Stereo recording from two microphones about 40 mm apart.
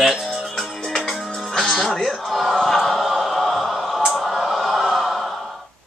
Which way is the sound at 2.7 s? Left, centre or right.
Centre.